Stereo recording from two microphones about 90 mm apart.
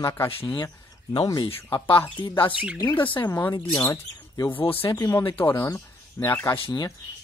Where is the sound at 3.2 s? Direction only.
30° left (ahead or behind).